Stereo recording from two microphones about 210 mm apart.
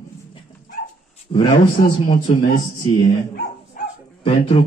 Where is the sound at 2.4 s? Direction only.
45° left (ahead or behind).